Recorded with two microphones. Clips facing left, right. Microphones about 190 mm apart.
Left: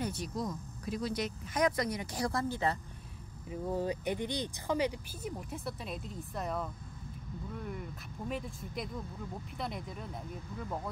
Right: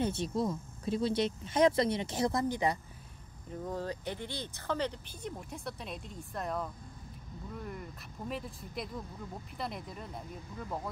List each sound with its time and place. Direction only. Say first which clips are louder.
0.0 s speech: right 4 dB; 25° right (ahead or behind)
3.4 s speech: left 3 dB; 10° left (ahead or behind)